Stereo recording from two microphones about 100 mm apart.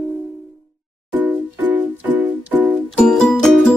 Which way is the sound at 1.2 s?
15° right (ahead or behind).